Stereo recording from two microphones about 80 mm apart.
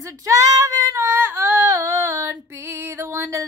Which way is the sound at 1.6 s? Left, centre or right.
Right.